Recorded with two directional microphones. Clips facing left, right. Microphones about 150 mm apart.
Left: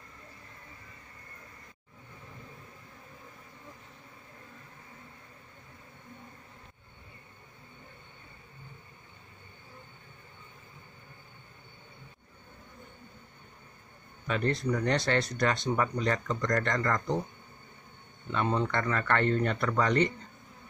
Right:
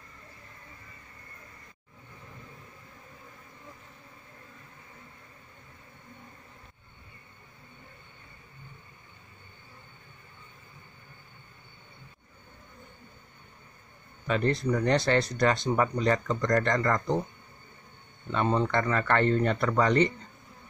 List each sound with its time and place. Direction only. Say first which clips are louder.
14.2 s speech: right 3 dB; 30° right (ahead or behind)
18.3 s speech: right 3 dB; 30° right (ahead or behind)